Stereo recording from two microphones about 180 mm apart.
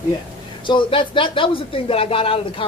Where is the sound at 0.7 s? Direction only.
30° left (ahead or behind).